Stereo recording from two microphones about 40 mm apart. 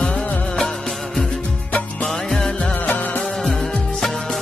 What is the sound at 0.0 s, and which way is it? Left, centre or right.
Music of bollywood, left.